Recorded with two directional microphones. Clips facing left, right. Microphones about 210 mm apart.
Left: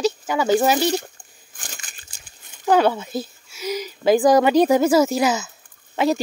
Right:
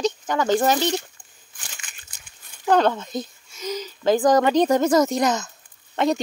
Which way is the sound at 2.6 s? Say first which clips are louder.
Left 2 dB; 5° left (ahead or behind).